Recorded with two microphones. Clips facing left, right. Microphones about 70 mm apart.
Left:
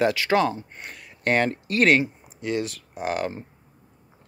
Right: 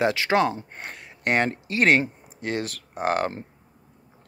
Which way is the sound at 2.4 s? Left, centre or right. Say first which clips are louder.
Left 2 dB; right.